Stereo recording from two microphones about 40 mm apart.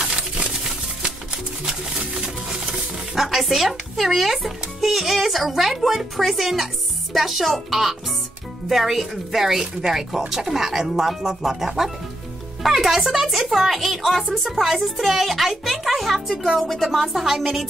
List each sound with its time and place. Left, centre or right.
0.1 s music: right
3.2 s a child's voice: centre
8.6 s a child's voice: centre